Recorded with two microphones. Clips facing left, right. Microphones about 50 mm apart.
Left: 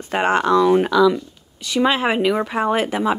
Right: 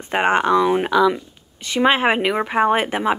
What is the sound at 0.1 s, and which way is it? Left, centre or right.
Speech, right.